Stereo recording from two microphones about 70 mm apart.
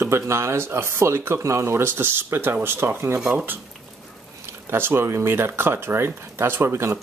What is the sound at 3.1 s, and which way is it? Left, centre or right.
Speech, centre.